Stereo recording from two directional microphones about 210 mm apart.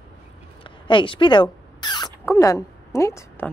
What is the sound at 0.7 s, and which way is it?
Rodents, 25° left (ahead or behind).